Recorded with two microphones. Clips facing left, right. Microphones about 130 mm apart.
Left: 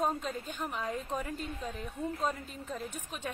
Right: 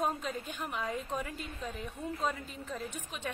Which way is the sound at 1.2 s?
40° left (ahead or behind).